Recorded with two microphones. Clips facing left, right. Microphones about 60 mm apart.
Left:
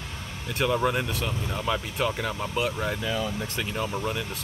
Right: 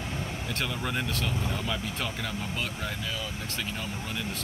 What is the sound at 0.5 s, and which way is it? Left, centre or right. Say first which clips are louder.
Speech: left 10 dB; centre.